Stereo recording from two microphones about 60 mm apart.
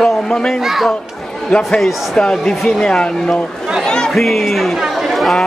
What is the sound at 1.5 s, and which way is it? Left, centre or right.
A man's voice, centre.